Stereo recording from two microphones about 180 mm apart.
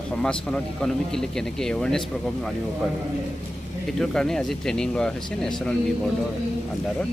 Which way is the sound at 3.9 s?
5° left (ahead or behind).